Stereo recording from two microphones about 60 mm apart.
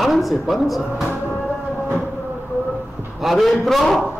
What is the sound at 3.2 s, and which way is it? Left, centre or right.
Speech, centre.